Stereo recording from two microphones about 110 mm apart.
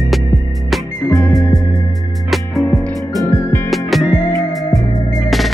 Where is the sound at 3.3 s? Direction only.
25° left (ahead or behind).